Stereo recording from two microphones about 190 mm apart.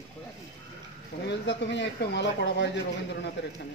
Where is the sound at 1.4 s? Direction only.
65° left (ahead or behind).